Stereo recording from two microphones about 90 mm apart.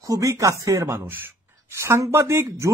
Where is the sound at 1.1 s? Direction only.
25° right (ahead or behind).